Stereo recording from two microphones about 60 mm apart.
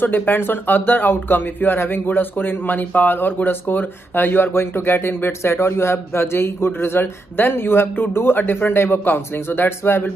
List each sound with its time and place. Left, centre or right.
0.0 s speech: left